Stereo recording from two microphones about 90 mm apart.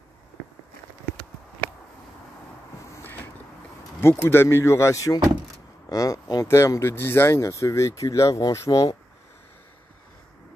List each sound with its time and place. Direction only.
4.0 s speech: 30° left (ahead or behind)
6.4 s speech: 30° left (ahead or behind)